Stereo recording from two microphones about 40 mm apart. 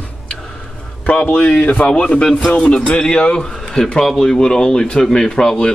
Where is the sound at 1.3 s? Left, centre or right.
Left.